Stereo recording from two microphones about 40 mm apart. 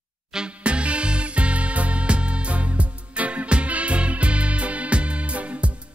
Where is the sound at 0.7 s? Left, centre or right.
Right.